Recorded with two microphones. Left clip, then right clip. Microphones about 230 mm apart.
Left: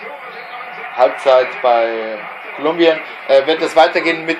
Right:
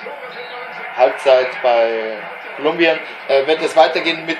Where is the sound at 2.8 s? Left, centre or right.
Left.